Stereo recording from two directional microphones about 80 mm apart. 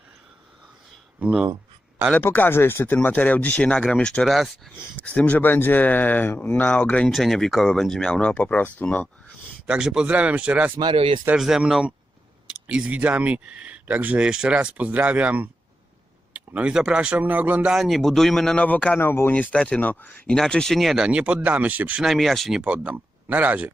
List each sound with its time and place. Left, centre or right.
2.1 s speech: left
7.1 s speech: centre; by 8.8 s left
9.7 s speech: centre
16.3 s a sound: centre
16.7 s speech: centre
17.7 s speech: centre
18.9 s speech: left
19.3 s speech: centre; by 22.0 s right
22.0 s speech: centre
22.6 s speech: centre